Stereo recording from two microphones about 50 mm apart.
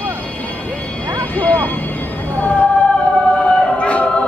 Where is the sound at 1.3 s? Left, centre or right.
Left.